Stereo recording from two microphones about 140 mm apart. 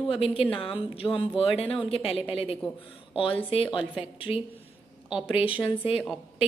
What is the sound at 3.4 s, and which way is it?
Speech, 40° left (ahead or behind).